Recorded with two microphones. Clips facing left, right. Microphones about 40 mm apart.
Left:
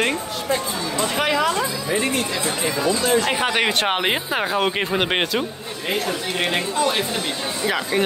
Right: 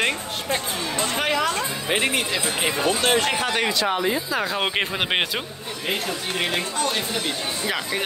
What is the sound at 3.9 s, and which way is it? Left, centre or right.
Speech, left.